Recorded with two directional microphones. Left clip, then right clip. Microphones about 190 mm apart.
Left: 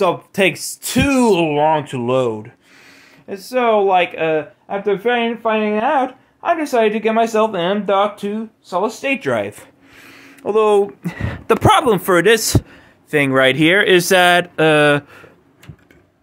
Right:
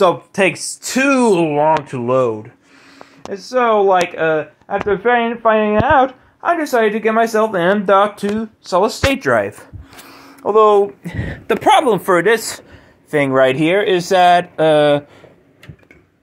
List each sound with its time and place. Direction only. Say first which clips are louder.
0.8 s speech: right 2 dB; centre (ahead or behind)
7.6 s speech: right 4 dB; 20° right (ahead or behind)
9.0 s a sound: right 4 dB; 10° right (ahead or behind); by 10.3 s 10° left (ahead or behind)
10.5 s speech: right 3 dB; 25° left (ahead or behind)
12.2 s speech: left 1 dB; 40° left (ahead or behind)
13.1 s speech: even; 25° left (ahead or behind)
13.4 s speech: left 1 dB; 35° left (ahead or behind)